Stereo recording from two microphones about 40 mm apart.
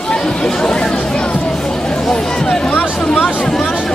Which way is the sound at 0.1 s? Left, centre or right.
Left.